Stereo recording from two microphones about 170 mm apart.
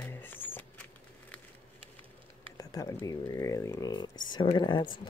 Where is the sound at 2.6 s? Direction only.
20° left (ahead or behind).